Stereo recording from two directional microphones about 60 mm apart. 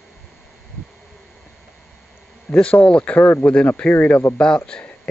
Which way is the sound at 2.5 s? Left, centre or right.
Left.